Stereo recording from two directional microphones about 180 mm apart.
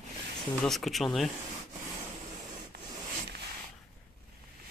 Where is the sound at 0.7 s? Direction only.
Centre (ahead or behind).